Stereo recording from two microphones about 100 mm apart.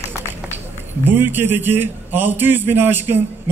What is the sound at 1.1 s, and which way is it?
A man's voice, 20° right (ahead or behind).